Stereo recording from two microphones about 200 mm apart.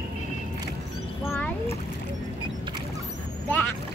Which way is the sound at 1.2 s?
10° left (ahead or behind).